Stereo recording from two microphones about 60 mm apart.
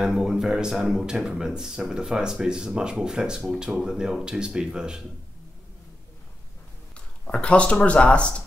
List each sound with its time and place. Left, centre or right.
0.0 s speech: centre
7.3 s speech: left